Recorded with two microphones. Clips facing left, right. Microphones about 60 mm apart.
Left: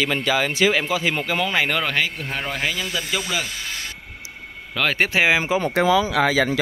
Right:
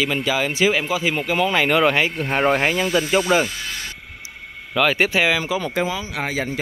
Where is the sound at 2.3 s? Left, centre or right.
Right.